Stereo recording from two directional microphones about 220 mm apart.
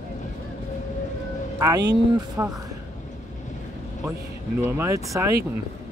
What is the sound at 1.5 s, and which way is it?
A man's voice, 15° right (ahead or behind).